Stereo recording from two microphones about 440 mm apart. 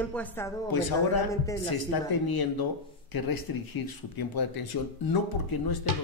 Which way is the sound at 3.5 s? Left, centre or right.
Left.